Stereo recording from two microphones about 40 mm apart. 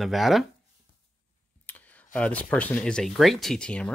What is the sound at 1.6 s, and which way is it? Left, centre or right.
Clicking, left.